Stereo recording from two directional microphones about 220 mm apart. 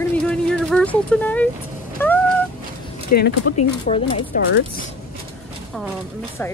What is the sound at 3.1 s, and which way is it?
Speech, 40° left (ahead or behind).